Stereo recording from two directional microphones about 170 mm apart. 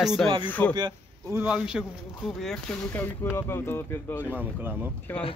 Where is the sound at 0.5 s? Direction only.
10° left (ahead or behind).